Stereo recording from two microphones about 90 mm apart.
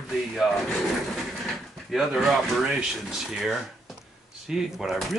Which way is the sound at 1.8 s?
Centre (ahead or behind).